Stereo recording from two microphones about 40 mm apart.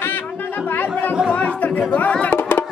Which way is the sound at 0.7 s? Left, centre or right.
Left.